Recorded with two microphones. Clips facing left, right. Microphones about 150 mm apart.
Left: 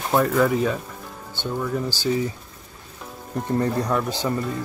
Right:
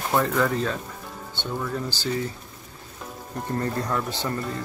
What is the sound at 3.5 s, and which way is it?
Speech, 15° left (ahead or behind).